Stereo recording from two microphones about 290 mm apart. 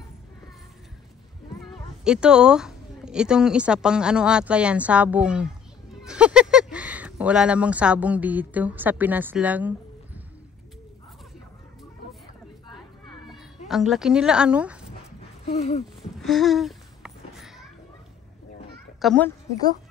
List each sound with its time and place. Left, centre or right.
1.6 s speech: centre
13.3 s speech: centre
15.4 s speech: left
16.0 s a sound: centre
18.9 s a child's voice: centre